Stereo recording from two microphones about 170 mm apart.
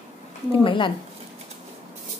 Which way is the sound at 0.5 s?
30° left (ahead or behind).